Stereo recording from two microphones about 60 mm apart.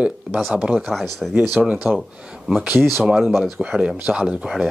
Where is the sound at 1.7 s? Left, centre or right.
Right.